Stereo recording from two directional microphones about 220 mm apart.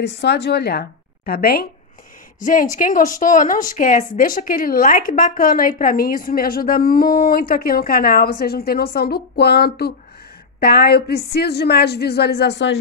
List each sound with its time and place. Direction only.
0.0 s a woman's voice: 50° left (ahead or behind)